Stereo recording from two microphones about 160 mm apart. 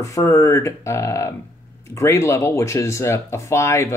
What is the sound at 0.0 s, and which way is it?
Speech, 20° left (ahead or behind).